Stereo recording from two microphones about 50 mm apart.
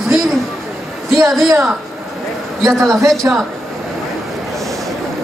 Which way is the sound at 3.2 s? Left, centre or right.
Right.